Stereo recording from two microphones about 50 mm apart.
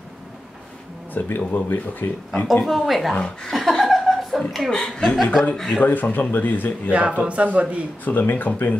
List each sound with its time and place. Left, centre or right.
1.1 s speech: left
2.6 s speech: centre
3.2 s speech: centre
3.5 s chuckle: centre
4.6 s speech: centre
5.0 s speech: centre
5.8 s speech: left
6.9 s speech: right
8.0 s speech: left